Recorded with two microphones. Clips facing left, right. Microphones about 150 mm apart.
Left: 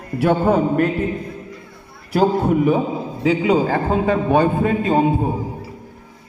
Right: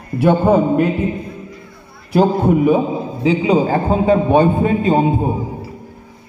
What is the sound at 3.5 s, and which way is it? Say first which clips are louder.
Speech: right 2 dB; 15° right (ahead or behind).